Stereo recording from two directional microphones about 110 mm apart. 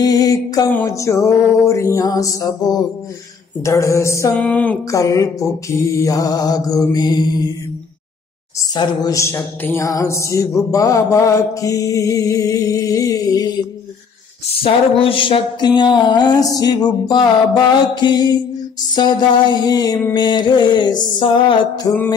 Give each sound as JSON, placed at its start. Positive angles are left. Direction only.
{"t": 0.0, "sound": "mantra", "side_deg": 35}
{"t": 0.8, "sound": "music", "side_deg": 30}
{"t": 4.4, "sound": "speech", "side_deg": 10}
{"t": 4.9, "sound": "mantra", "side_deg": 30}
{"t": 8.7, "sound": "mantra", "side_deg": 40}
{"t": 9.2, "sound": "music", "side_deg": 25}
{"t": 10.7, "sound": "mantra", "side_deg": 30}
{"t": 14.5, "sound": "a sound", "side_deg": 55}
{"t": 17.9, "sound": "mantra", "side_deg": 40}
{"t": 18.9, "sound": "a sound", "side_deg": 40}
{"t": 21.8, "sound": "mantra", "side_deg": 35}